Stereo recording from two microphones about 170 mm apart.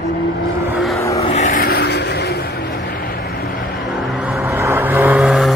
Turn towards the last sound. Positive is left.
turn(degrees=-5)  # may be behind; listen again after turning